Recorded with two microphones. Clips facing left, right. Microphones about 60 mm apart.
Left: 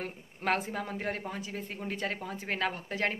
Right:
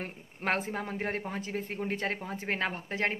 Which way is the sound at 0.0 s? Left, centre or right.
Right.